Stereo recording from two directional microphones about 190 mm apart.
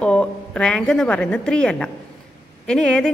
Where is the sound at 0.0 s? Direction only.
5° left (ahead or behind).